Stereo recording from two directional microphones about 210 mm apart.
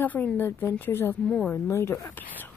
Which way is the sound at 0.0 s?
10° left (ahead or behind).